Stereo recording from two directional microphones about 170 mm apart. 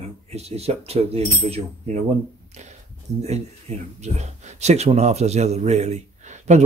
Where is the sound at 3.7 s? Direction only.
40° right (ahead or behind).